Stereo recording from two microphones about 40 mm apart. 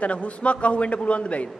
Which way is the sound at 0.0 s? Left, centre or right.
Left.